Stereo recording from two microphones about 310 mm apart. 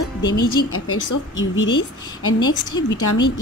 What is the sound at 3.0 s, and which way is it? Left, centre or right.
Speech, left.